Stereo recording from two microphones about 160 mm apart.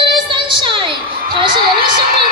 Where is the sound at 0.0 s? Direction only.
30° right (ahead or behind).